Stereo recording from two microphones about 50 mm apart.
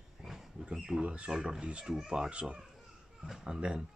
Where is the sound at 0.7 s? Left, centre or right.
Centre.